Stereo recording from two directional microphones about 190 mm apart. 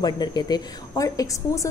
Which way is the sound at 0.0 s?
20° left (ahead or behind).